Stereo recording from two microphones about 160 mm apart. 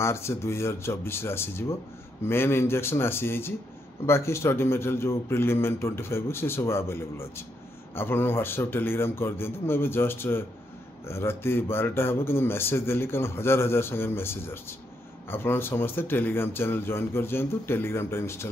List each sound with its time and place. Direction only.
0.0 s speech: 15° left (ahead or behind)